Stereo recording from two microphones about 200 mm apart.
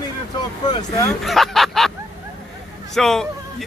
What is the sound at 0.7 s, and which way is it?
Speech, 20° left (ahead or behind).